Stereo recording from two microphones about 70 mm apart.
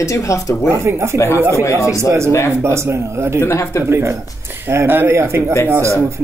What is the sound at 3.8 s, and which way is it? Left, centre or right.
Speech, right.